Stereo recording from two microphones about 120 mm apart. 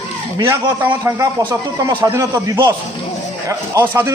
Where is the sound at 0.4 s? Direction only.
20° right (ahead or behind).